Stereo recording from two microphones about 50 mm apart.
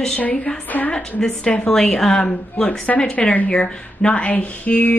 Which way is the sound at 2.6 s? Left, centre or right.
Left.